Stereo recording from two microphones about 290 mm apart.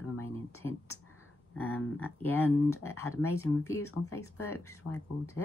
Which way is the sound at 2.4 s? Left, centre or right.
Left.